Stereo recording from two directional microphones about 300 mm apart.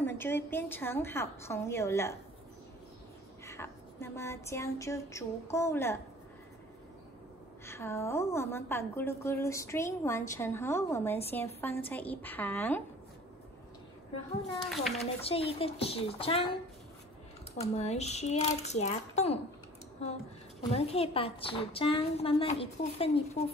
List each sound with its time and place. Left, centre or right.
0.0 s a woman's voice: centre
3.4 s a woman's voice: centre
7.6 s a woman's voice: centre
14.7 s a woman's voice: centre
15.1 s a woman's voice: centre
17.6 s a woman's voice: left
20.7 s a woman's voice: centre